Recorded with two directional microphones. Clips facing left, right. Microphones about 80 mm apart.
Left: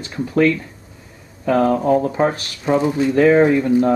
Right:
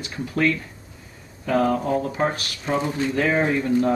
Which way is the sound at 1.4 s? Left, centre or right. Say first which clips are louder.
Left 5 dB; left.